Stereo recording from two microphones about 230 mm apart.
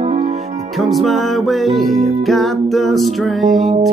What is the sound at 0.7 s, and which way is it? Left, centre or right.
Music, centre.